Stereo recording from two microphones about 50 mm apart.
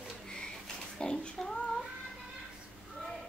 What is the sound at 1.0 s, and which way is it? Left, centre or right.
Child singing, centre.